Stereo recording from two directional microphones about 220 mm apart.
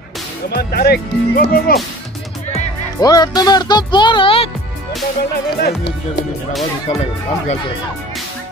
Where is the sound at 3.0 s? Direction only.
15° left (ahead or behind).